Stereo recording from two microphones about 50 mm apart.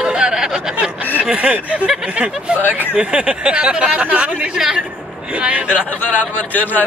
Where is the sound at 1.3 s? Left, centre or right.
Centre.